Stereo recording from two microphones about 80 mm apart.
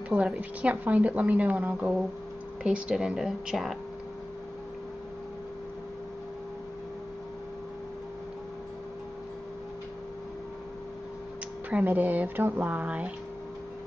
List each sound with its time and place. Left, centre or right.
0.1 s a woman's voice: centre
11.7 s a woman's voice: right